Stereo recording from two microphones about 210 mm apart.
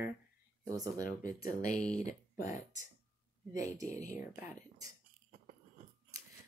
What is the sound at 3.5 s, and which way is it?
Speech, 15° right (ahead or behind).